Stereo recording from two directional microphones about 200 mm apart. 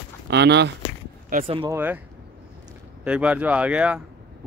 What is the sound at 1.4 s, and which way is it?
Speech, 25° right (ahead or behind).